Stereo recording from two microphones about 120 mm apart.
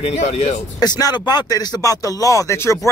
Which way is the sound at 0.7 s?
30° left (ahead or behind).